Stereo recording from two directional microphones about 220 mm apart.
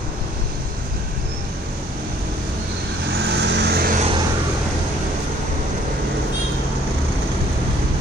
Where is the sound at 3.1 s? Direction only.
50° right (ahead or behind).